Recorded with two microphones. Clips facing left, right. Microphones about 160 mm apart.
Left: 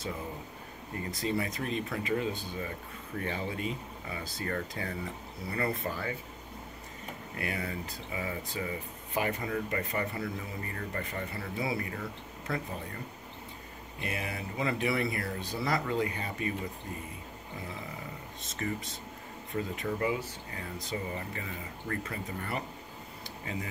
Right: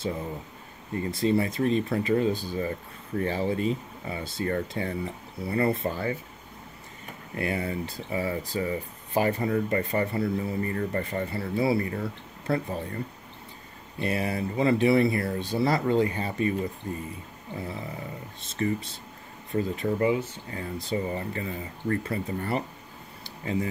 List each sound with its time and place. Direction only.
1.1 s speech: 30° right (ahead or behind)
7.3 s speech: 25° right (ahead or behind)
18.4 s speech: 30° right (ahead or behind)
23.2 s a sound: 30° right (ahead or behind)